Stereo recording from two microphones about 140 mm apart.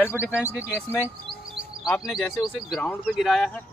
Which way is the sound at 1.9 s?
5° right (ahead or behind).